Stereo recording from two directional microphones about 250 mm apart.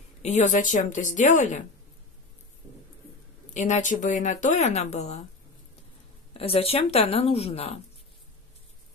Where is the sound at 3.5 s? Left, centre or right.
Left.